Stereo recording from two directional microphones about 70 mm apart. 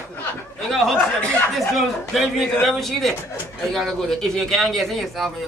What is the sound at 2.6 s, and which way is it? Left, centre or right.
A man's voice, centre.